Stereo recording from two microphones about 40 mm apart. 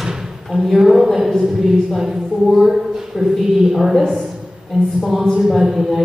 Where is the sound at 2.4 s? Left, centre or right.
Centre.